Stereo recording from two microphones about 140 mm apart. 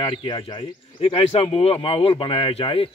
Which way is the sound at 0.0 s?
35° left (ahead or behind).